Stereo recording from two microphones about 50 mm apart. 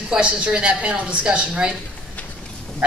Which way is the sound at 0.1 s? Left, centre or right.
Right.